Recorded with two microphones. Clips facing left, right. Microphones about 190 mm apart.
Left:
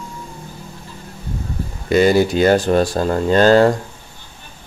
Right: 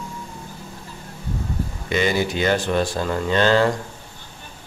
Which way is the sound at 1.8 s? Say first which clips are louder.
Left 8 dB; 40° left (ahead or behind).